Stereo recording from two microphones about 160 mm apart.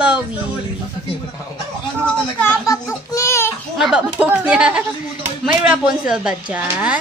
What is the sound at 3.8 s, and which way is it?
A woman's voice, 5° right (ahead or behind).